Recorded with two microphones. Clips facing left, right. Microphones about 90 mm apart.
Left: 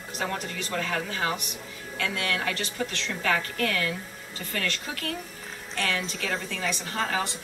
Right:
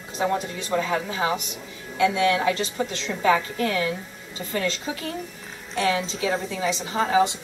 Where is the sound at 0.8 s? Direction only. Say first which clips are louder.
Right 2 dB; 15° right (ahead or behind).